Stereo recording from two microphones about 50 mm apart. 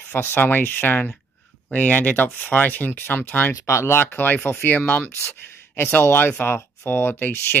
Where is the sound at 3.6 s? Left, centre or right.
Left.